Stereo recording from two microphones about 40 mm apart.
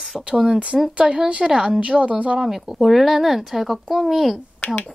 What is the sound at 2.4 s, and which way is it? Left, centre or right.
A woman's voice, centre.